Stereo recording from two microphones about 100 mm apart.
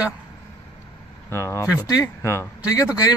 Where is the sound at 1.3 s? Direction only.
25° left (ahead or behind).